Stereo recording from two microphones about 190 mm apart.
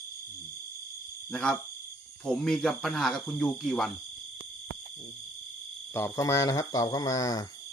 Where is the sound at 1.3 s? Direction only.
5° left (ahead or behind).